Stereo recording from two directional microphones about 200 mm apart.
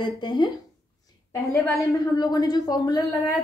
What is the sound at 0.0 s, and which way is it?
Speech, 20° left (ahead or behind).